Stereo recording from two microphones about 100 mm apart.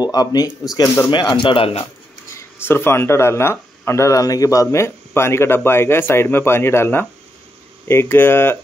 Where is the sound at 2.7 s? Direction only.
25° left (ahead or behind).